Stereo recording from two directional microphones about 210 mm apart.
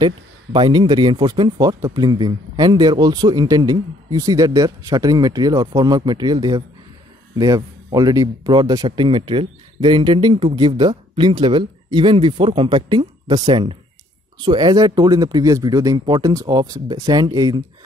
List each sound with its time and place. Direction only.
0.0 s speech: 20° right (ahead or behind)